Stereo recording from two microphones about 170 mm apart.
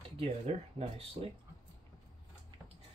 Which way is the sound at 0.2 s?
35° right (ahead or behind).